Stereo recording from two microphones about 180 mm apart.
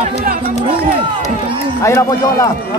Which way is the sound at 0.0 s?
50° right (ahead or behind).